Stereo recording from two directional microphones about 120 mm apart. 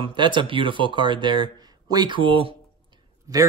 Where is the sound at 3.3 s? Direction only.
25° right (ahead or behind).